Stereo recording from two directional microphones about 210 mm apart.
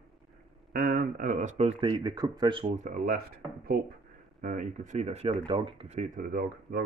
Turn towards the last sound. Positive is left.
turn(degrees=-45)  # may be behind; listen again after turning